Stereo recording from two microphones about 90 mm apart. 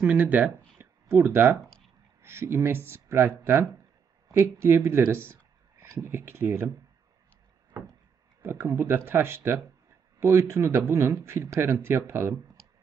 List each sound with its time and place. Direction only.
0.0 s speech: 15° right (ahead or behind)
1.0 s speech: 30° right (ahead or behind)
8.4 s speech: 25° right (ahead or behind)